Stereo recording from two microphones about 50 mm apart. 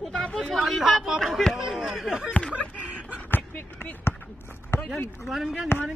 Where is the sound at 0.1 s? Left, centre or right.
Centre.